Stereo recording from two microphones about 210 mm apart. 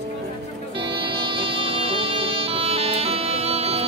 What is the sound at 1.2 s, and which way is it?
Music, 25° right (ahead or behind).